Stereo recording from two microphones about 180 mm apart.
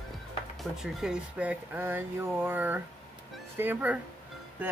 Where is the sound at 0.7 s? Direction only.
5° right (ahead or behind).